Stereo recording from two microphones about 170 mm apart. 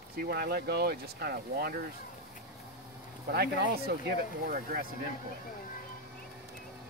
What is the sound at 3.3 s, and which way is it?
Speech, 65° right (ahead or behind).